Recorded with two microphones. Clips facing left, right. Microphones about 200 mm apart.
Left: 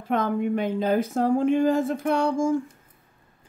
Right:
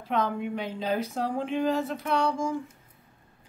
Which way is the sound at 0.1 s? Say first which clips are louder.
Left 5 dB; 50° left (ahead or behind).